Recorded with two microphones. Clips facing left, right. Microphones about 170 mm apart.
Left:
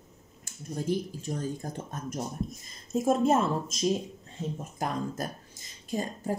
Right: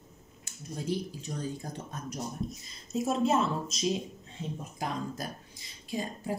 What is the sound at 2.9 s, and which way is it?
Speech, 50° left (ahead or behind).